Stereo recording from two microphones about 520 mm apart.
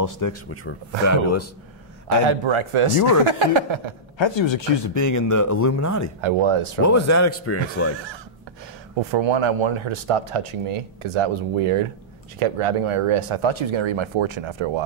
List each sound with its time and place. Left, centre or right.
0.0 s speech: left
2.2 s a man's voice: right
4.2 s speech: left
4.9 s speech: left
6.2 s a man's voice: right
6.8 s speech: left
9.1 s speech: right